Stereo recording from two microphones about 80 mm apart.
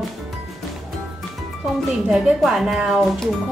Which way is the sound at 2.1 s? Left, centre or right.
Centre.